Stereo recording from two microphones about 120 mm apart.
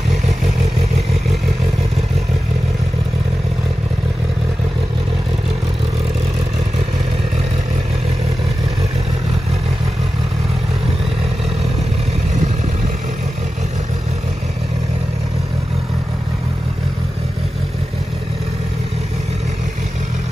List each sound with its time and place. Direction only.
12.4 s vehicle: 70° right (ahead or behind)